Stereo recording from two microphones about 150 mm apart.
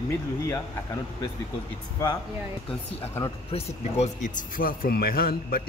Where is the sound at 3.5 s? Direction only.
45° left (ahead or behind).